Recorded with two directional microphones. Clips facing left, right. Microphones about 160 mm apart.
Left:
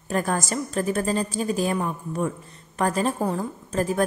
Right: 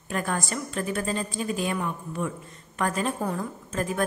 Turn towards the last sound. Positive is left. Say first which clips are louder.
# left 4 dB
turn(degrees=35)  # may be behind; listen again after turning